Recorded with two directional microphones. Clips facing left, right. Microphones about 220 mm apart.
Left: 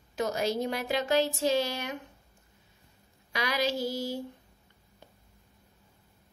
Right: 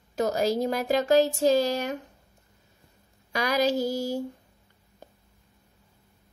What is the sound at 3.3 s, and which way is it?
Speech, 45° right (ahead or behind).